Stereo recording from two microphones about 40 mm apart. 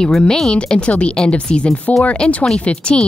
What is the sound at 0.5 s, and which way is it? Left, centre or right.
Speech, left.